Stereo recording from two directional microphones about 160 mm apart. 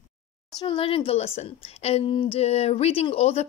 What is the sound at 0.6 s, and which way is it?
Speech, 35° left (ahead or behind).